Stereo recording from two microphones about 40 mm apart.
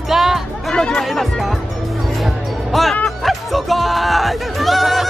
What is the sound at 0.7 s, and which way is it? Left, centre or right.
Speech, left.